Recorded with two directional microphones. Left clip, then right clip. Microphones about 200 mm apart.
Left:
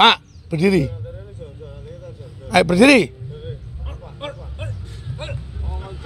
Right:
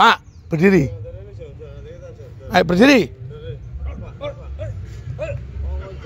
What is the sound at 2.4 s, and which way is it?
Speech, 5° right (ahead or behind).